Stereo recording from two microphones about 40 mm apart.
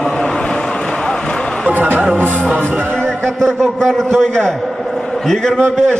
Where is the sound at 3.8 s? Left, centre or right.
Centre.